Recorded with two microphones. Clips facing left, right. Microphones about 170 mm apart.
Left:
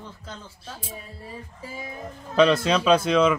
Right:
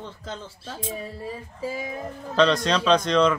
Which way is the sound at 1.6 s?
90° right.